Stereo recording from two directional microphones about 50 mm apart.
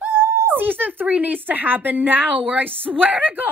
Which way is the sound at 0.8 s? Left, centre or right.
Right.